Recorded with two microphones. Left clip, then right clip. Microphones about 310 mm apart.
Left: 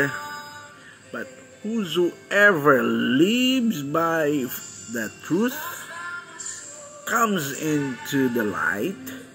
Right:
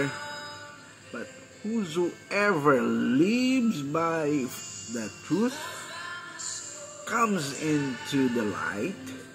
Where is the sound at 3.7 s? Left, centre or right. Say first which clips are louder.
Left 5 dB; centre.